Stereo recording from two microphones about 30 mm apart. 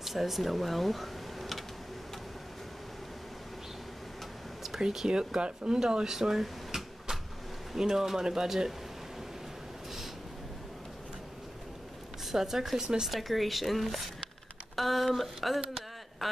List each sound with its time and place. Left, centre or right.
0.0 s speech: centre
4.6 s a sound: centre
5.0 s speech: right
6.0 s drawer open or close: centre
7.7 s speech: centre
12.3 s speech: centre
13.0 s speech: centre